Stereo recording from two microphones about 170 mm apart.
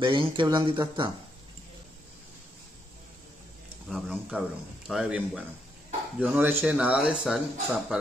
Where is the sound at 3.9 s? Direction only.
Centre (ahead or behind).